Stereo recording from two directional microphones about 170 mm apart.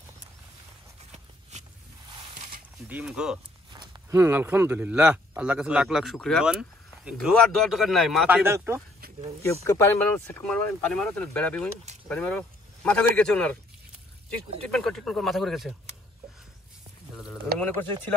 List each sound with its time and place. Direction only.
1.5 s a sound: 40° right (ahead or behind)
2.9 s speech: 10° right (ahead or behind)
3.7 s speech: 25° right (ahead or behind); by 8.4 s centre (ahead or behind)
8.5 s speech: 15° right (ahead or behind)
9.5 s speech: 15° left (ahead or behind)
11.8 s vehicle: 40° right (ahead or behind)
12.1 s speech: 5° left (ahead or behind)
14.7 s speech: 5° left (ahead or behind)
17.1 s a sound: centre (ahead or behind)
17.6 s speech: 10° left (ahead or behind)